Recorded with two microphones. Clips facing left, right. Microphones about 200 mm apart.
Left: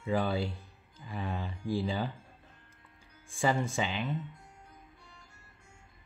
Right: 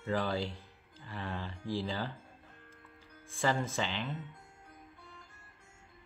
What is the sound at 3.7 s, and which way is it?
Speech, 15° left (ahead or behind).